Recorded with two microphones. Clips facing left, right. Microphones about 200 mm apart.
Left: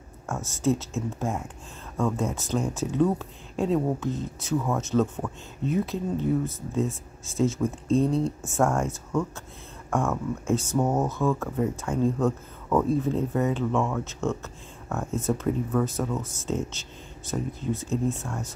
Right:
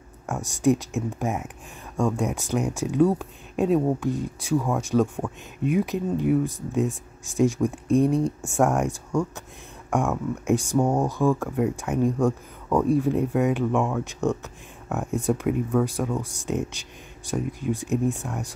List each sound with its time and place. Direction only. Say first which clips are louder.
0.3 s speech: right 4 dB; 15° right (ahead or behind)